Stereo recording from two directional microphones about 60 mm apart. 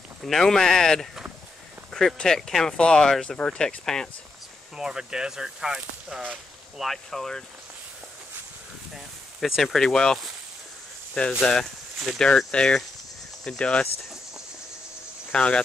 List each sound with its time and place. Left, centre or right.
0.2 s speech: centre
1.9 s a sound: centre
2.1 s speech: centre
4.7 s speech: centre
6.8 s speech: centre
8.9 s speech: centre
11.2 s speech: centre
15.3 s speech: centre